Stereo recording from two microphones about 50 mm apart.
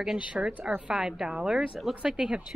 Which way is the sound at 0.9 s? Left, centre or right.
Centre.